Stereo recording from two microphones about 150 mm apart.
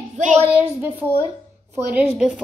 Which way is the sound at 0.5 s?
10° right (ahead or behind).